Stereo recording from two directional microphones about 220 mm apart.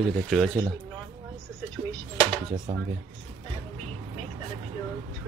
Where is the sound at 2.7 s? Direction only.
25° right (ahead or behind).